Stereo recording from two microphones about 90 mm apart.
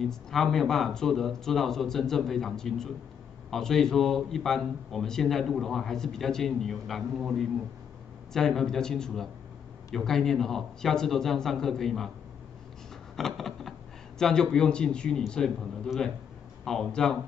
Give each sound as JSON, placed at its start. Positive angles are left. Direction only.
{"t": 0.0, "sound": "a man's voice", "side_deg": 5}
{"t": 13.1, "sound": "a man's voice", "side_deg": 5}